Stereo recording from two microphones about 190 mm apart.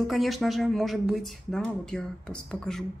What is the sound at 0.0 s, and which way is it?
Speech, centre (ahead or behind).